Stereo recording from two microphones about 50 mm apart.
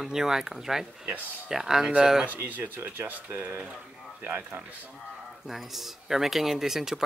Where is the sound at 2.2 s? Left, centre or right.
Right.